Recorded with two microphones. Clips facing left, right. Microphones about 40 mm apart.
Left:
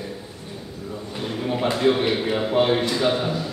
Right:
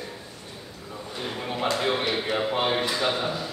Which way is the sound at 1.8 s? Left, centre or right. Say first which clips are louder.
Left 6 dB; centre.